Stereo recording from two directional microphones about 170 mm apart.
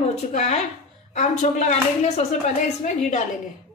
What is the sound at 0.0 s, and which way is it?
A woman's voice, 40° left (ahead or behind).